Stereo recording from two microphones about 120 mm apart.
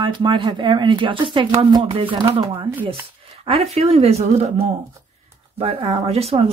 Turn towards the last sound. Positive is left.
turn(degrees=-55)  # may be behind; listen again after turning